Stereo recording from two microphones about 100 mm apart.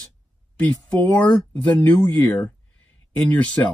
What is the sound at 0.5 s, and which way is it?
Speech, 15° left (ahead or behind).